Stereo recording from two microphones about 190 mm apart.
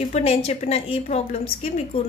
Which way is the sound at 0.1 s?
35° left (ahead or behind).